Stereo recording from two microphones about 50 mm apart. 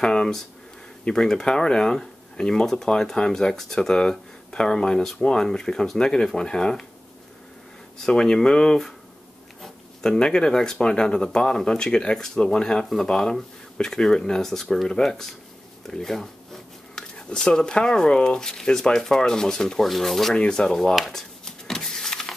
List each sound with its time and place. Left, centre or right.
0.0 s a sound: centre
1.0 s speech: centre
8.0 s speech: centre
10.0 s speech: centre
20.3 s speech: centre
21.1 s a sound: centre